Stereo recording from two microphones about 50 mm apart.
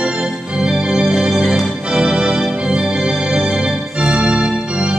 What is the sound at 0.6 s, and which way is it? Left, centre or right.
Organ, centre.